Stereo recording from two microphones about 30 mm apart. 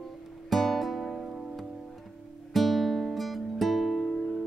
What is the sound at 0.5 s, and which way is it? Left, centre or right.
Music, centre.